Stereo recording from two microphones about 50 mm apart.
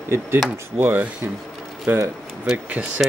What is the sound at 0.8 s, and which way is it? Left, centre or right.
Rub, right.